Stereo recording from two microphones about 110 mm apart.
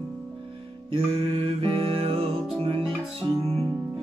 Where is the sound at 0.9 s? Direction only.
60° right (ahead or behind).